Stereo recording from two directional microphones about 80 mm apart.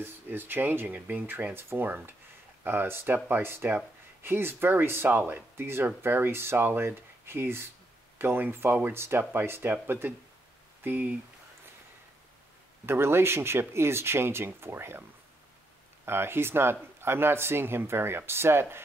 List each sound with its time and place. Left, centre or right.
0.0 s speech: right
12.8 s speech: right
16.1 s speech: right